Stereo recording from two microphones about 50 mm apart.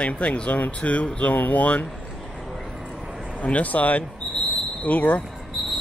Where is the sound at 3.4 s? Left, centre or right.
Left.